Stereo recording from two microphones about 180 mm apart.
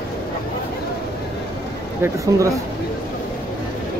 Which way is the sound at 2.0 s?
15° right (ahead or behind).